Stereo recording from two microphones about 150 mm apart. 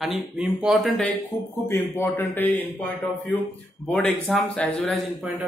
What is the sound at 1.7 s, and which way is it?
Speech, 15° left (ahead or behind).